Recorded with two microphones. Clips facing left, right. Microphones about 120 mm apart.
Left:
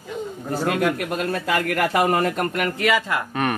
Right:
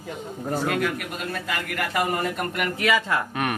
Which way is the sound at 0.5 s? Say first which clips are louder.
Left 4 dB; centre (ahead or behind).